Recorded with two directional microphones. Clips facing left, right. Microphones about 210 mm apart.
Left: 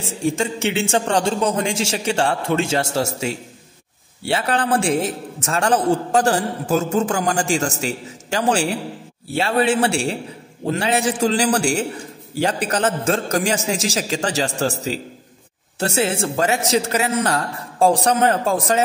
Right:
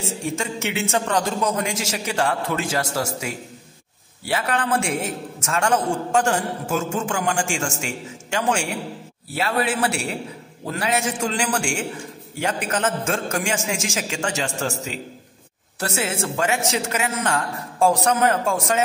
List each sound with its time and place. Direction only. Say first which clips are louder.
0.2 s a man's voice: left 8 dB; 30° left (ahead or behind)